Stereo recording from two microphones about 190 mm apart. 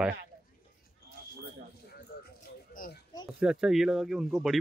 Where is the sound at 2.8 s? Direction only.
45° left (ahead or behind).